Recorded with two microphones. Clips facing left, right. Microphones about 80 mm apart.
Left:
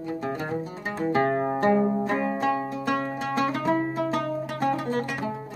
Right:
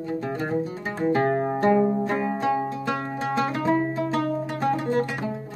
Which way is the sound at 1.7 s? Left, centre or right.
Centre.